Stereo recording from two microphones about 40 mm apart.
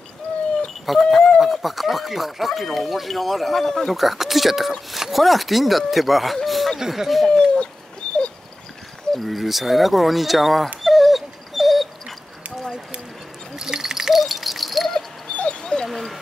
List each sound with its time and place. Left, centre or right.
0.3 s a sound: left
0.8 s a sound: centre
1.4 s speech: centre
3.9 s speech: centre
6.8 s speech: centre
7.2 s speech: left
9.1 s speech: centre
10.8 s dog: centre
13.6 s dog: centre
15.9 s a sound: centre